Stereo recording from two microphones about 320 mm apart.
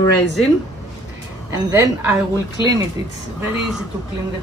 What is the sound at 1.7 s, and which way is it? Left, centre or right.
Speech, centre.